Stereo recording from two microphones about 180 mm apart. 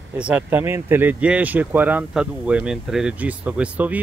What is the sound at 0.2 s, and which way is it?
Speech, 10° right (ahead or behind).